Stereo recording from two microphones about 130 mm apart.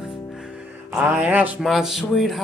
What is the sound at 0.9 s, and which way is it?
Music, 15° right (ahead or behind).